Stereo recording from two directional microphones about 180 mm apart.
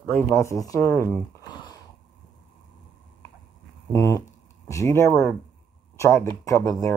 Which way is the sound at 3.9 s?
20° left (ahead or behind).